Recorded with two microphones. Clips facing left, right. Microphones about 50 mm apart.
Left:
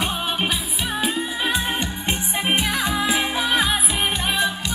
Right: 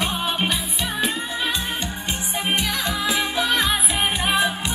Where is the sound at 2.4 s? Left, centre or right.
Centre.